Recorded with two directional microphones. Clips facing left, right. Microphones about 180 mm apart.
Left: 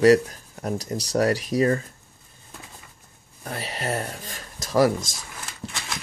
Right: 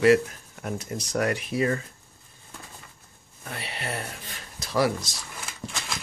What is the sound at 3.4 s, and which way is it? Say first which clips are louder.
Speech: left 5 dB; 40° left (ahead or behind).